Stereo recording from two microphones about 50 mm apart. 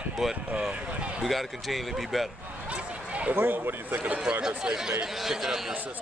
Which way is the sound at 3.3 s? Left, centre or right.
Right.